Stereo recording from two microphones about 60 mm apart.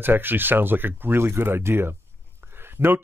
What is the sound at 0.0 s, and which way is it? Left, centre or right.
Speech, right.